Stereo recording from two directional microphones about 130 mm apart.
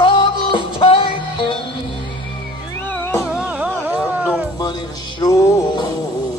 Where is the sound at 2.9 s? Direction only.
15° left (ahead or behind).